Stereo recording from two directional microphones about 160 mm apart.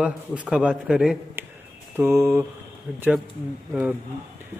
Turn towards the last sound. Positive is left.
turn(degrees=-10)  # may be behind; listen again after turning